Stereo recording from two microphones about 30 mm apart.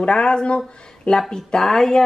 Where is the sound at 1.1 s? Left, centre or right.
Centre.